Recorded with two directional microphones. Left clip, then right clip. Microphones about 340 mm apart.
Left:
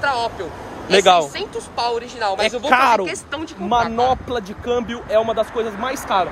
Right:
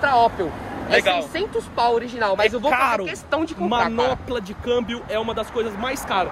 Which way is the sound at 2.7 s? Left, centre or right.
Left.